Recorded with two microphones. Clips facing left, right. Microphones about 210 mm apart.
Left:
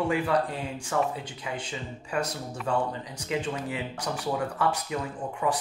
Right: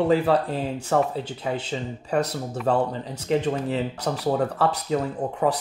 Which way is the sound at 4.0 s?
65° right (ahead or behind).